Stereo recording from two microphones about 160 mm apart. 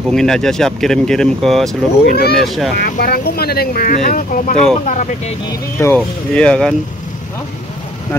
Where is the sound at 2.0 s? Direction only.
75° left (ahead or behind).